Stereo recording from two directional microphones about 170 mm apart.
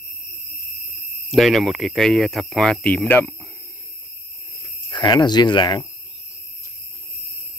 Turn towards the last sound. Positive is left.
turn(degrees=25)  # may be behind; listen again after turning